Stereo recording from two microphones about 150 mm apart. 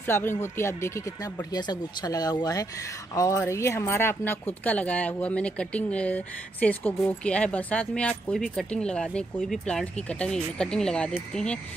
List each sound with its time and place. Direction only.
0.0 s speech: 15° left (ahead or behind)